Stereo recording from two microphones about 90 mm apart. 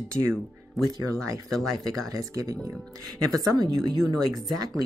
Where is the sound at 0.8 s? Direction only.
45° right (ahead or behind).